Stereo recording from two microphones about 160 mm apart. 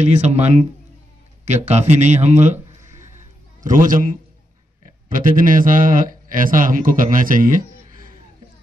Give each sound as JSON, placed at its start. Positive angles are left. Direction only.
{"t": 0.0, "sound": "a man's voice", "side_deg": -45}
{"t": 3.6, "sound": "a man's voice", "side_deg": -55}
{"t": 5.1, "sound": "a man's voice", "side_deg": -60}